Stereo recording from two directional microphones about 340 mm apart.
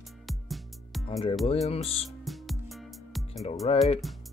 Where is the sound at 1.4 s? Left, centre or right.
Centre.